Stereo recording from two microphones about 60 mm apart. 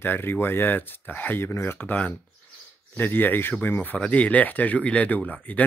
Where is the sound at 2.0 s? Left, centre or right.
Left.